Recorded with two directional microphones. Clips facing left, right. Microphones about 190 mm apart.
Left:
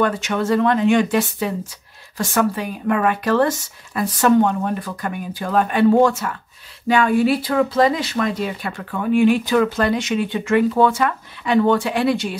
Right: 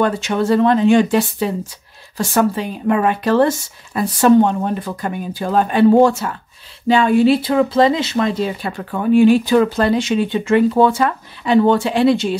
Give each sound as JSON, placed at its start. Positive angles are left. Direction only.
{"t": 0.0, "sound": "speech", "side_deg": -30}